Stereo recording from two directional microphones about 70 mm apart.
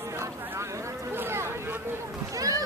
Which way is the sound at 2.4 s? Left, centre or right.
Right.